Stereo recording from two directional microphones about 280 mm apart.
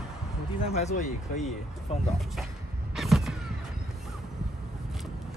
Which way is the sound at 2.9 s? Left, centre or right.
Centre.